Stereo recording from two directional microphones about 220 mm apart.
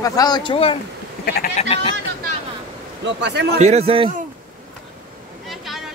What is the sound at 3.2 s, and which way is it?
Speech, 50° right (ahead or behind).